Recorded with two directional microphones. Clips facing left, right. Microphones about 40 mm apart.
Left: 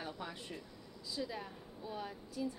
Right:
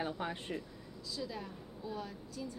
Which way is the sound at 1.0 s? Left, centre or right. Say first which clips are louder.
Even; centre.